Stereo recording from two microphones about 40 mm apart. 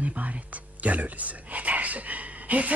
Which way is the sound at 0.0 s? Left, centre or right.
Right.